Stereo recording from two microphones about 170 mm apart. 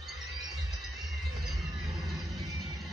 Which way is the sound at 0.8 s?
Centre (ahead or behind).